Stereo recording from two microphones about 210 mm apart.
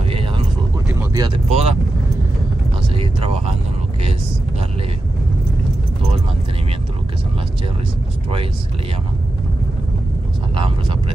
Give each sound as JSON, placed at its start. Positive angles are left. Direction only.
{"t": 1.1, "sound": "vehicle", "side_deg": -20}
{"t": 3.0, "sound": "vehicle", "side_deg": -30}
{"t": 10.5, "sound": "vehicle", "side_deg": -25}